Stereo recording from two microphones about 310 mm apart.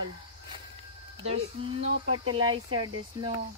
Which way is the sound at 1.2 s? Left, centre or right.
Centre.